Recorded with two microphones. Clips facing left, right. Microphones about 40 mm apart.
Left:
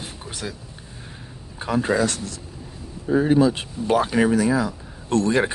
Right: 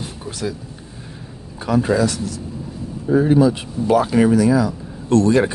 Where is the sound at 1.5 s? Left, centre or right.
Centre.